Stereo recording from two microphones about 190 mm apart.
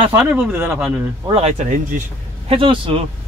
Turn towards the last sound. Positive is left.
turn(degrees=-25)  # may be behind; listen again after turning